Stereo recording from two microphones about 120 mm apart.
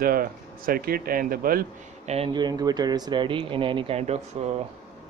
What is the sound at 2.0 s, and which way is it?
Speech, 60° right (ahead or behind).